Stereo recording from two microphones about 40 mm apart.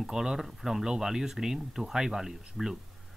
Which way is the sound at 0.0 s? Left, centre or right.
Centre.